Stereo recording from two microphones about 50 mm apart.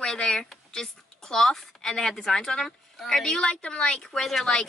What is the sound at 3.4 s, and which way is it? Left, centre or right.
Speech, left.